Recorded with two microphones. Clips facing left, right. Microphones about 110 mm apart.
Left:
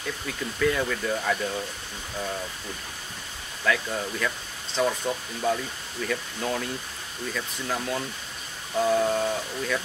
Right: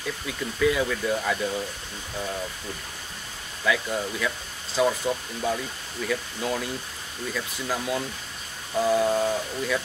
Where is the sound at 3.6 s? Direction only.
5° right (ahead or behind).